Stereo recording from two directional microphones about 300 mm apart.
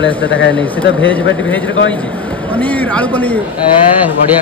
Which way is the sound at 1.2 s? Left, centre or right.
Left.